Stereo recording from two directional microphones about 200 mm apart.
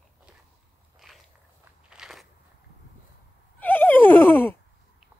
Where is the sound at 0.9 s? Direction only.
Centre (ahead or behind).